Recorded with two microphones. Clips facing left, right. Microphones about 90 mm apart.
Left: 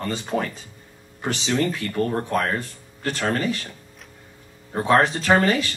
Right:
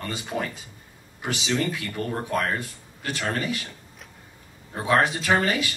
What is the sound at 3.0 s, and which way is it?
Speech, 40° left (ahead or behind).